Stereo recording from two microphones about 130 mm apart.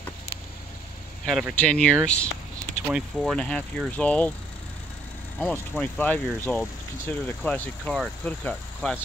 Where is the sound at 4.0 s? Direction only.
10° left (ahead or behind).